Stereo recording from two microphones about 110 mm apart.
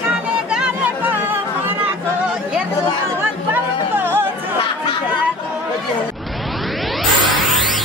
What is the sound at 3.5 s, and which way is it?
Music, 20° right (ahead or behind).